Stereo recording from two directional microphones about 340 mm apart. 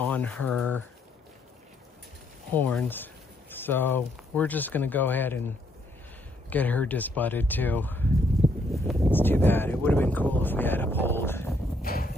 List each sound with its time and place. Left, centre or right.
0.0 s speech: centre
2.5 s speech: centre
6.5 s speech: centre
8.7 s speech: centre
9.1 s speech: centre
11.8 s a sound: left